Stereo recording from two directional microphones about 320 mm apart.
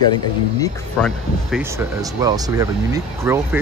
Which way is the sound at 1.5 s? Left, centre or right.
Centre.